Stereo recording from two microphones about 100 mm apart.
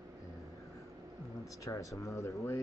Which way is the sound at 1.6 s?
35° left (ahead or behind).